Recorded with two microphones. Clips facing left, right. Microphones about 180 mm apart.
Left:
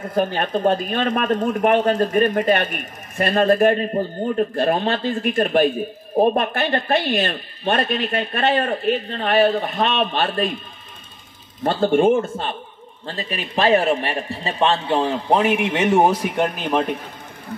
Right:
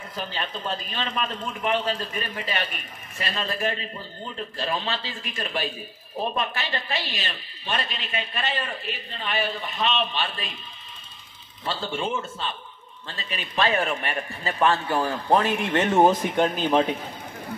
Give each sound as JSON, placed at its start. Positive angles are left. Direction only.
{"t": 0.0, "sound": "speech", "side_deg": 50}
{"t": 11.6, "sound": "speech", "side_deg": 55}
{"t": 13.0, "sound": "a man's voice", "side_deg": 40}